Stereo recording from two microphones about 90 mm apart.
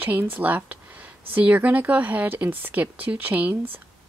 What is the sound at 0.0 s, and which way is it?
Speech, 20° right (ahead or behind).